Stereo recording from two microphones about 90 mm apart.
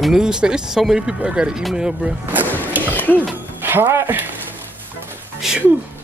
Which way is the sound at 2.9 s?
20° left (ahead or behind).